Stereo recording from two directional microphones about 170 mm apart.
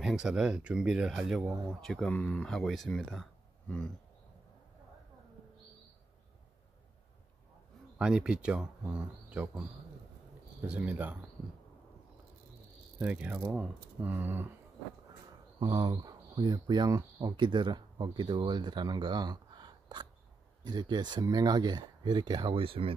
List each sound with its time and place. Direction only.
0.0 s speech: 5° right (ahead or behind)
8.0 s speech: 5° right (ahead or behind)
11.4 s a sound: centre (ahead or behind)
13.0 s speech: 10° right (ahead or behind)
15.6 s speech: 25° right (ahead or behind)